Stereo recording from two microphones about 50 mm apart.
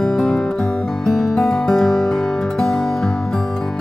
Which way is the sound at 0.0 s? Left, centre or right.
Centre.